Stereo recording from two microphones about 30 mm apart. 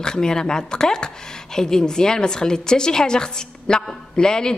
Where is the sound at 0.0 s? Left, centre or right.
Left.